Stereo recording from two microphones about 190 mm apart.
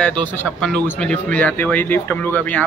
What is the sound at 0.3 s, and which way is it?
A man's voice, 5° left (ahead or behind).